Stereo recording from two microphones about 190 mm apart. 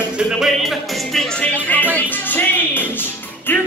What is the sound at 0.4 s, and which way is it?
Music, centre (ahead or behind).